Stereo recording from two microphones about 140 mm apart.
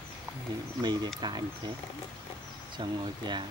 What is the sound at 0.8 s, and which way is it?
Speech, 30° right (ahead or behind).